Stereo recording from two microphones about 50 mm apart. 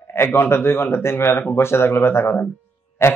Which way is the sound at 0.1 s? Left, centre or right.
Left.